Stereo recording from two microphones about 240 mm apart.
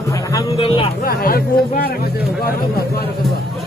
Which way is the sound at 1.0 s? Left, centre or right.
Left.